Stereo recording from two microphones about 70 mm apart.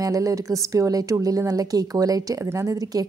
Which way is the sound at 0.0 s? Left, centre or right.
Right.